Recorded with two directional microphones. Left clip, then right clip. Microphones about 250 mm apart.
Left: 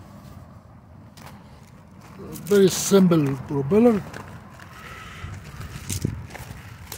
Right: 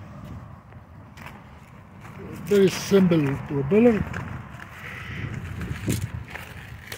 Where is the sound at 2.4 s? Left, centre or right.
Centre.